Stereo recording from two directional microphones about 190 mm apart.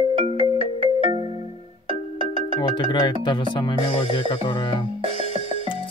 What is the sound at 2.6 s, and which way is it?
Speech, 25° left (ahead or behind).